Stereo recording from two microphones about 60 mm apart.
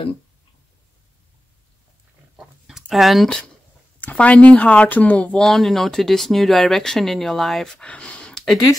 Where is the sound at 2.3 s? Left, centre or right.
Centre.